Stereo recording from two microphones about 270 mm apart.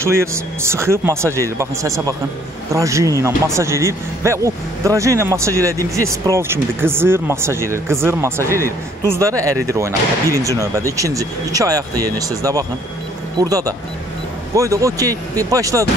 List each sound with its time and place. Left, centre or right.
0.0 s speech: centre